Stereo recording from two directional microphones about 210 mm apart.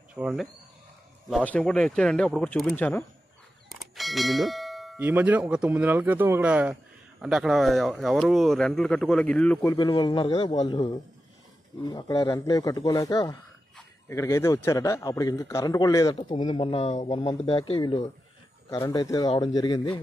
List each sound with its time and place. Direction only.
0.1 s speech: 5° right (ahead or behind)
1.3 s clang: 5° left (ahead or behind)
9.8 s speech: 20° left (ahead or behind)
17.1 s speech: 20° left (ahead or behind)